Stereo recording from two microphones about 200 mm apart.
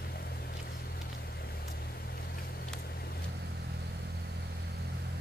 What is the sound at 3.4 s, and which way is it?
Vehicle, 55° right (ahead or behind).